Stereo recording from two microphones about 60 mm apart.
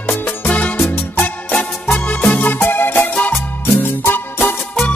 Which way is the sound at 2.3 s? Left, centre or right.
Left.